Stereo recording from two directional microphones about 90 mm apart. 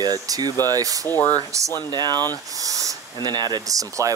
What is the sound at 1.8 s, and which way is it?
Speech, 50° right (ahead or behind).